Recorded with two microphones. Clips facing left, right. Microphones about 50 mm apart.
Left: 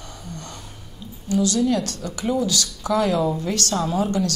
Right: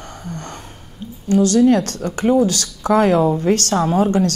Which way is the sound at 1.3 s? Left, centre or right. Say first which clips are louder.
Right 7 dB; right.